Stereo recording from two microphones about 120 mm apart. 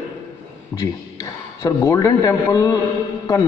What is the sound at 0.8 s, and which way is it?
A man's voice, 25° left (ahead or behind).